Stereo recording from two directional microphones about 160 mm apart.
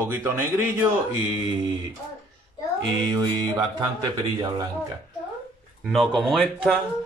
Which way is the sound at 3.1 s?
25° right (ahead or behind).